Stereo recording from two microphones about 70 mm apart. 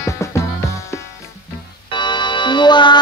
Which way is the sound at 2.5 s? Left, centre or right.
Left.